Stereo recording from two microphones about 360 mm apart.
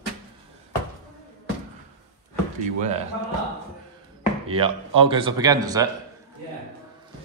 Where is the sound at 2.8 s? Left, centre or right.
Centre.